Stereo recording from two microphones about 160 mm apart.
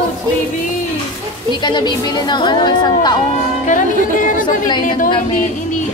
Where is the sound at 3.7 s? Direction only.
55° left (ahead or behind).